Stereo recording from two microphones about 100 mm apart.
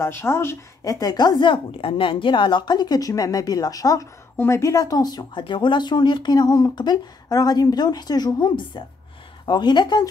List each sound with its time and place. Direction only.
0.0 s speech: 25° left (ahead or behind); by 10.0 s 45° left (ahead or behind)